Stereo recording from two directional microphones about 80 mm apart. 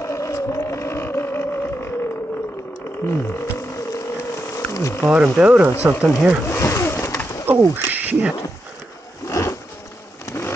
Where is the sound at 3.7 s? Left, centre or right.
Left.